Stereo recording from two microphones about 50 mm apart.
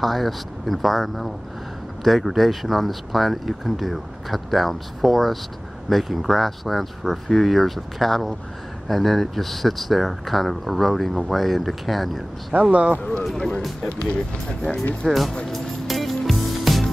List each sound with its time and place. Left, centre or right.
0.0 s speech: centre
12.7 s speech: right
13.2 s speech: centre
15.0 s speech: centre
15.4 s music: centre